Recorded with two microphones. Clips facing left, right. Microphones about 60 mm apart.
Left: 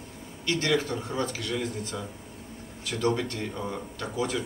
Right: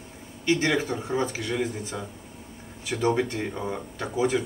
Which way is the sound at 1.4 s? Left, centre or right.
Centre.